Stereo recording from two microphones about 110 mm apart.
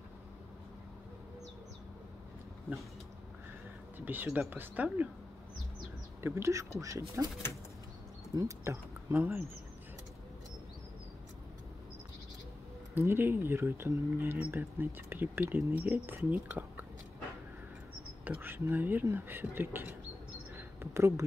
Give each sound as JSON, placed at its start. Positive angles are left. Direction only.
{"t": 4.0, "sound": "speech", "side_deg": -15}
{"t": 6.2, "sound": "speech", "side_deg": -25}
{"t": 8.4, "sound": "speech", "side_deg": -25}
{"t": 12.9, "sound": "speech", "side_deg": -20}
{"t": 18.2, "sound": "speech", "side_deg": -15}
{"t": 20.5, "sound": "a sound", "side_deg": -25}